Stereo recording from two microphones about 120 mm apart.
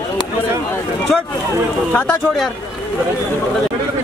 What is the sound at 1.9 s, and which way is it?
Speech, 10° left (ahead or behind).